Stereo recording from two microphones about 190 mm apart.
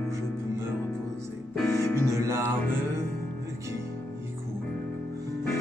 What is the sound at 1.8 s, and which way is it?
Music, 15° left (ahead or behind).